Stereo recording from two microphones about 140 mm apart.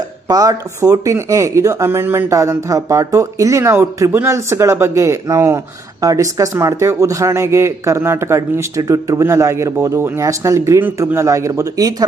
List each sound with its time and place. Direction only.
0.3 s speech: 25° right (ahead or behind)